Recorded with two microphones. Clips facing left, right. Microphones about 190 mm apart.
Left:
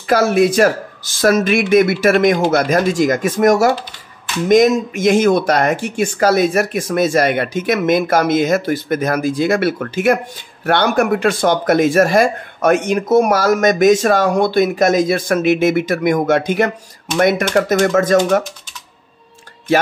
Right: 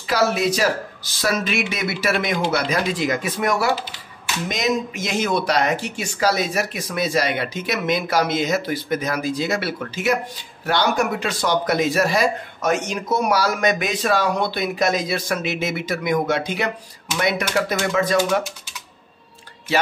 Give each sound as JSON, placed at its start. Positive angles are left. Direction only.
{"t": 0.0, "sound": "speech", "side_deg": 50}